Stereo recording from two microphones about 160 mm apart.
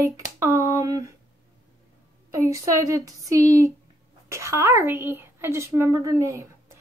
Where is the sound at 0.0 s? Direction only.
20° right (ahead or behind).